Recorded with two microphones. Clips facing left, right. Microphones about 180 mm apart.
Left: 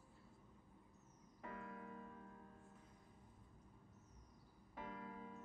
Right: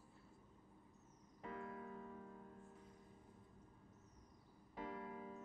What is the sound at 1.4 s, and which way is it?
Music, 25° right (ahead or behind).